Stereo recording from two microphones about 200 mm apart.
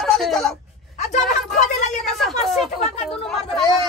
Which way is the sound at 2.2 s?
Centre (ahead or behind).